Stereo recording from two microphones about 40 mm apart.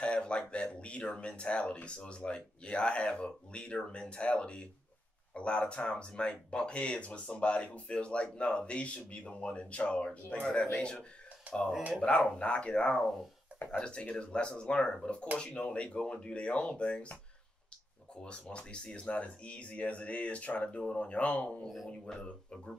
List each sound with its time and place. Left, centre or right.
0.0 s speech: left
12.0 s speech: left
18.2 s speech: left
22.1 s speech: left